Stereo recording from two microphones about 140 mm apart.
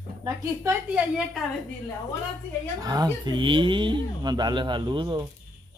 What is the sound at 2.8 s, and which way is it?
Speech, 25° right (ahead or behind).